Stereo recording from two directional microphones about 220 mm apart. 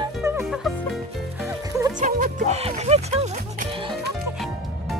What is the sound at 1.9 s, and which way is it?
Music, 35° right (ahead or behind).